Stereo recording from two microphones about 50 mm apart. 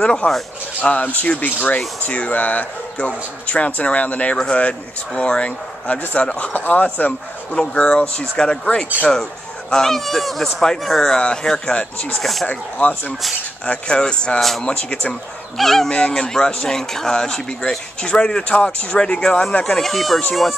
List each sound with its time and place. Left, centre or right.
0.0 s speech: centre
0.8 s speech: left
7.5 s speech: centre
12.2 s speech: centre
12.4 s speech: left
13.8 s speech: centre
15.5 s speech: centre
15.9 s speech: centre